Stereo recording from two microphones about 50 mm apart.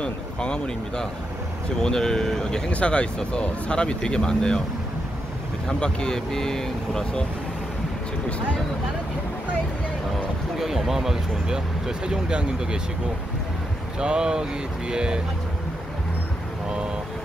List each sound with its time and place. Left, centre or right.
0.0 s speech: centre
2.7 s speech: left
5.7 s speech: centre
10.6 s speech: centre
13.9 s speech: centre